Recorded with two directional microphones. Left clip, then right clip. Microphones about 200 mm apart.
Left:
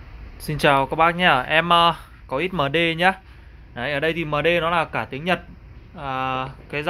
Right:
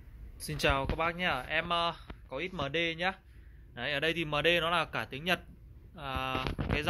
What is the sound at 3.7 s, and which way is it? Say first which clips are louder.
Speech: left 9 dB; centre (ahead or behind).